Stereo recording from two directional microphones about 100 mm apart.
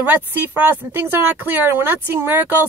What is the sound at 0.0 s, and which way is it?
Speech, 20° right (ahead or behind).